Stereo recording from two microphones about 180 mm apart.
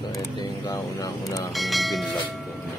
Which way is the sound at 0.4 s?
20° left (ahead or behind).